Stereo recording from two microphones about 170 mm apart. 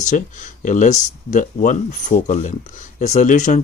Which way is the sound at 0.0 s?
45° left (ahead or behind).